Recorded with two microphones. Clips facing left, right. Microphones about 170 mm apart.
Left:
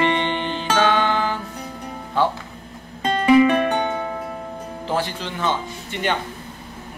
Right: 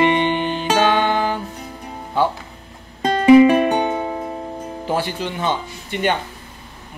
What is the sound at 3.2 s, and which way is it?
Music, 25° right (ahead or behind).